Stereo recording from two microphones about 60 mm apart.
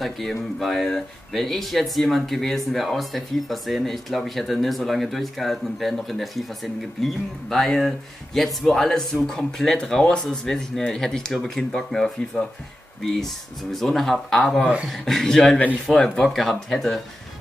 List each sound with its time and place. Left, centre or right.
0.0 s speech: centre
14.6 s speech: centre
14.9 s speech: centre